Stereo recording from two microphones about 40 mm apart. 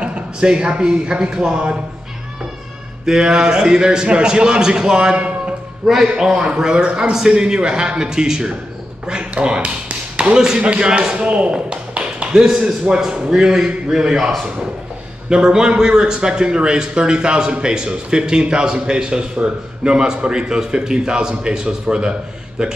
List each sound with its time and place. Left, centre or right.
0.0 s a man's voice: right
3.1 s a man's voice: centre
5.9 s a man's voice: centre
9.0 s tap: right
10.6 s a man's voice: right